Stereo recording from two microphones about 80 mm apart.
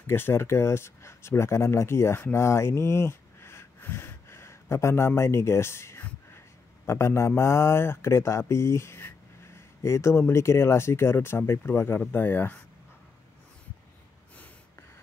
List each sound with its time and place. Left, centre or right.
0.0 s speech: left